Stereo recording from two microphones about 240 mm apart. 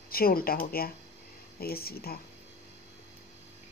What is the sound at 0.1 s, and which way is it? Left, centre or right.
Speech, left.